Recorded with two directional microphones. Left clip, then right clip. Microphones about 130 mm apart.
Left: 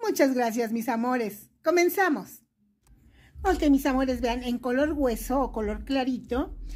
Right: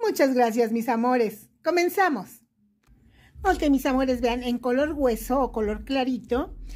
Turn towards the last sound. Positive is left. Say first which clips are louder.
# right 3 dB
turn(degrees=-20)  # may be behind; listen again after turning